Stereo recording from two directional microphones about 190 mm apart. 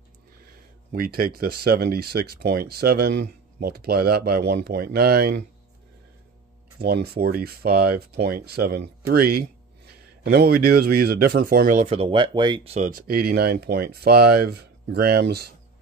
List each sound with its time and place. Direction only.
0.9 s speech: 50° right (ahead or behind)
6.8 s speech: 55° right (ahead or behind); by 12.9 s 35° right (ahead or behind)
12.9 s speech: 50° right (ahead or behind)